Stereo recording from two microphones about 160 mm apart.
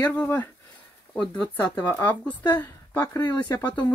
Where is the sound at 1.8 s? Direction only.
15° left (ahead or behind).